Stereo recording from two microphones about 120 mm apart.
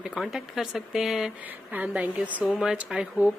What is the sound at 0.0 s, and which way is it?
Speech, 5° right (ahead or behind).